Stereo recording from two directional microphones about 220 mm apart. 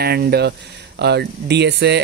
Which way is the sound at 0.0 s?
45° right (ahead or behind).